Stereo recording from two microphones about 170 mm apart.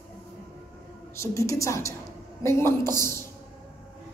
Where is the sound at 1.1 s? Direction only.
15° left (ahead or behind).